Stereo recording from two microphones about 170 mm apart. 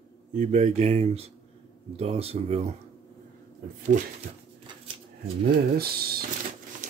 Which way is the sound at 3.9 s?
45° right (ahead or behind).